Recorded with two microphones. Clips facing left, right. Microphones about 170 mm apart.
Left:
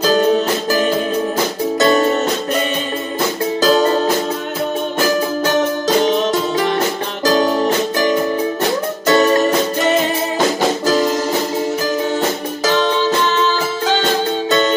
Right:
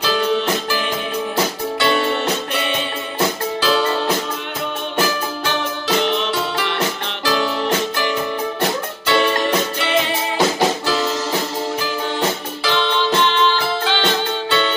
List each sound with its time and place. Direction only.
0.0 s music: 40° left (ahead or behind)
3.6 s music: 40° left (ahead or behind)
5.5 s music: 40° left (ahead or behind)
12.6 s music: 45° left (ahead or behind)